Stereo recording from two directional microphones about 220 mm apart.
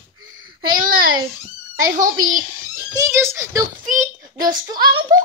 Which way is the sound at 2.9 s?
15° right (ahead or behind).